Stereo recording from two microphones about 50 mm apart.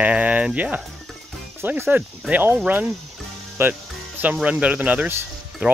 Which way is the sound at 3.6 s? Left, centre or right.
Right.